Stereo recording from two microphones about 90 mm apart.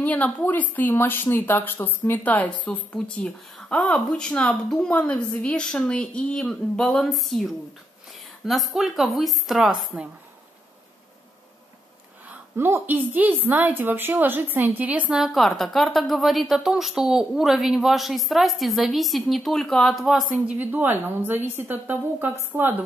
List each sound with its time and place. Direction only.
0.0 s a woman's voice: 15° left (ahead or behind); by 10.0 s 5° right (ahead or behind)
12.3 s a woman's voice: 25° right (ahead or behind)
15.1 s a woman's voice: centre (ahead or behind)
20.4 s a woman's voice: 20° right (ahead or behind)